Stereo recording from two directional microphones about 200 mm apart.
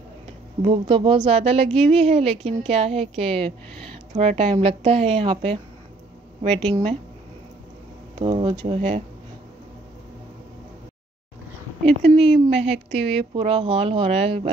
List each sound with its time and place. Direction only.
0.7 s speech: 25° right (ahead or behind)
8.2 s speech: 25° right (ahead or behind)
12.0 s speech: 30° right (ahead or behind)